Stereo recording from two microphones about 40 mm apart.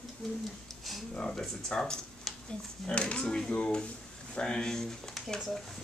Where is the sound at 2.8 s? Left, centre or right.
Left.